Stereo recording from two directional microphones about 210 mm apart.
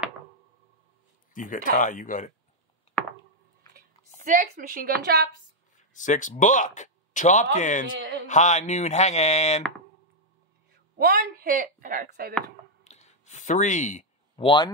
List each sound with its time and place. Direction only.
1.3 s speech: 40° left (ahead or behind)
3.7 s speech: 40° right (ahead or behind)
5.9 s speech: 35° left (ahead or behind)
11.0 s speech: 45° right (ahead or behind)
12.8 s a sound: 35° left (ahead or behind)